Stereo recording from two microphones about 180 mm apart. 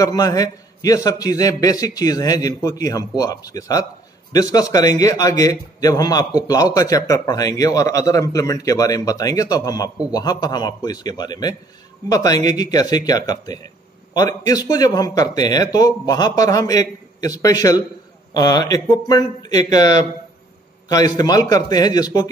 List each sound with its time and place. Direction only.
0.0 s a man's voice: 20° left (ahead or behind)